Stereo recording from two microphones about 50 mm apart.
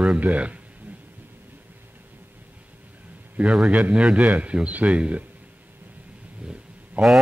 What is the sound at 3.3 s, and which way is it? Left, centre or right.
A man's voice, right.